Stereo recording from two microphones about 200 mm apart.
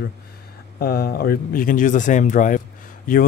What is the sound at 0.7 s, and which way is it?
Speech, 50° left (ahead or behind).